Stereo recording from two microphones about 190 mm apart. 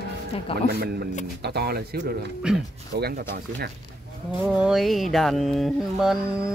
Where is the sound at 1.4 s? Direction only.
60° right (ahead or behind).